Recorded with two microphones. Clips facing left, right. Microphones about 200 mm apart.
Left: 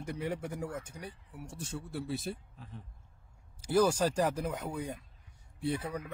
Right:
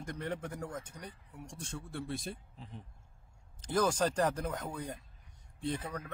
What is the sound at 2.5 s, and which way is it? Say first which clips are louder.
Speech: even; 20° right (ahead or behind).